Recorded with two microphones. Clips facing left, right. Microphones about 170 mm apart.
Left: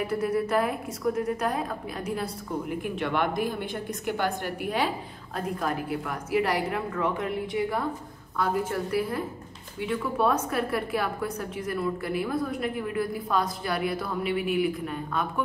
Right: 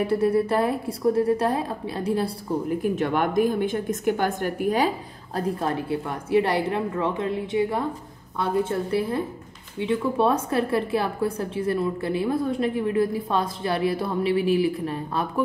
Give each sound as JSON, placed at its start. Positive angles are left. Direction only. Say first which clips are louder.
{"t": 0.0, "sound": "a woman's voice", "louder": "right 6 dB", "side_deg": -30}
{"t": 2.8, "sound": "a woman's voice", "louder": "right 2 dB", "side_deg": -45}
{"t": 5.6, "sound": "a woman's voice", "louder": "right 3 dB", "side_deg": -25}